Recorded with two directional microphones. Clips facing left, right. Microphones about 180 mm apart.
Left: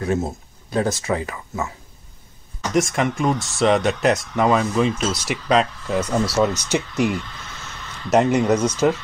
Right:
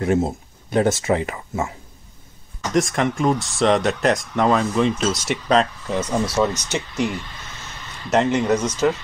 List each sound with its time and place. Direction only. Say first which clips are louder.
0.0 s speech: right 3 dB; 25° right (ahead or behind)
2.7 s speech: even; centre (ahead or behind)
8.1 s speech: left 2 dB; 10° left (ahead or behind)